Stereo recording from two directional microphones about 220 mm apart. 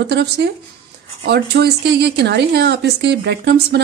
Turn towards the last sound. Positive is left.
turn(degrees=-50)  # may be behind; listen again after turning